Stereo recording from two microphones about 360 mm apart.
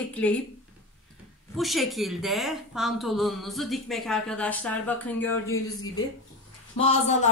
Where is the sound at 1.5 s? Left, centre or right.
Centre.